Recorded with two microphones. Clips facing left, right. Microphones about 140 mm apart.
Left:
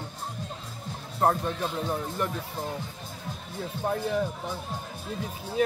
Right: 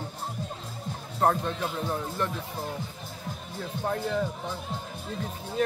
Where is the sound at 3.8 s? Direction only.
10° left (ahead or behind).